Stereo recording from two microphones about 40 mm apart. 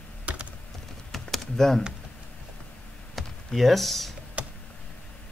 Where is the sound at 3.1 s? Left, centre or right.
Centre.